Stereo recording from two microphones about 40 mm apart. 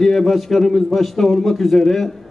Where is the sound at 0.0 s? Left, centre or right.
Centre.